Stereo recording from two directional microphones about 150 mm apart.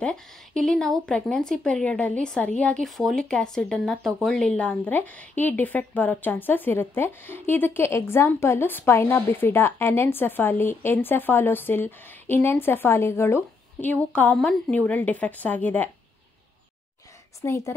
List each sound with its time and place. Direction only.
0.0 s speech: 5° left (ahead or behind)
17.4 s a woman's voice: 20° left (ahead or behind)